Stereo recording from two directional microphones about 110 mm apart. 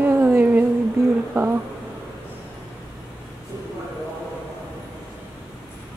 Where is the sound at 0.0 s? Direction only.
15° right (ahead or behind).